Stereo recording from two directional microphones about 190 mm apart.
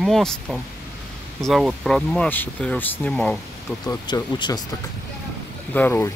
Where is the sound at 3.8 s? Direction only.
20° left (ahead or behind).